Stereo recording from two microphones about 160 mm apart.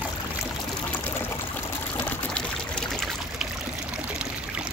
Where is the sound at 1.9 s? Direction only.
10° left (ahead or behind).